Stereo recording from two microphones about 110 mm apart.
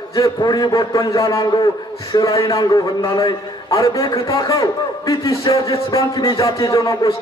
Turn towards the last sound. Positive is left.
turn(degrees=35)  # may be behind; listen again after turning